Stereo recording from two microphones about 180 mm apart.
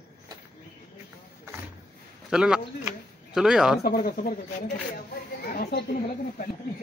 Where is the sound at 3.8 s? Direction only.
55° left (ahead or behind).